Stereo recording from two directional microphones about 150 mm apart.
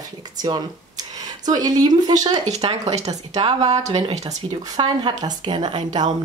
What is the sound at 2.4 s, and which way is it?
Speech, 45° right (ahead or behind).